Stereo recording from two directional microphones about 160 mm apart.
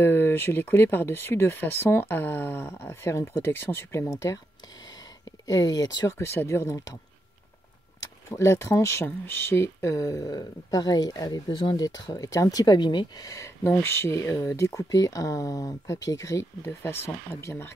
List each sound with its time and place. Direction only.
0.0 s speech: 15° left (ahead or behind)
5.5 s speech: 25° left (ahead or behind)
8.3 s speech: 15° left (ahead or behind)